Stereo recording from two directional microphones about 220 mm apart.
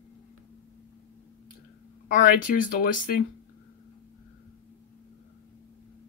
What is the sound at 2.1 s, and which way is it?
Speech, 35° left (ahead or behind).